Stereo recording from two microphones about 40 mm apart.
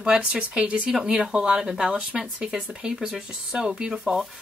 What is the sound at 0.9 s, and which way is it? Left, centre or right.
Speech, centre.